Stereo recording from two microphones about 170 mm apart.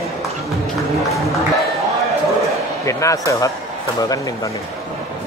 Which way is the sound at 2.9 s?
20° left (ahead or behind).